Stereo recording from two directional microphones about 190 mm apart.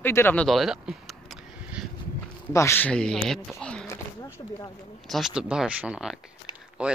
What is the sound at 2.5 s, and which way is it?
Speech, 15° left (ahead or behind).